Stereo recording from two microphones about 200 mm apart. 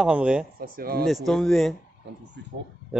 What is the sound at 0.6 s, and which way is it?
Speech, 50° right (ahead or behind).